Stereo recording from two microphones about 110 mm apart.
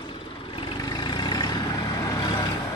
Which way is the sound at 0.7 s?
40° left (ahead or behind).